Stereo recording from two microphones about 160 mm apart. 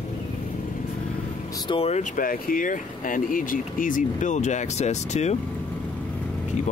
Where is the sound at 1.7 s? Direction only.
40° left (ahead or behind).